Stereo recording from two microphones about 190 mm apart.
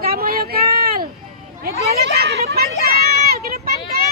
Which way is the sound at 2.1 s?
55° right (ahead or behind).